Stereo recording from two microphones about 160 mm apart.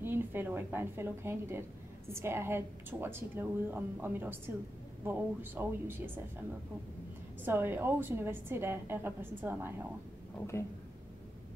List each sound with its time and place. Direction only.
0.0 s a woman's voice: 15° right (ahead or behind)
7.4 s a woman's voice: 10° right (ahead or behind)
10.3 s speech: 15° left (ahead or behind)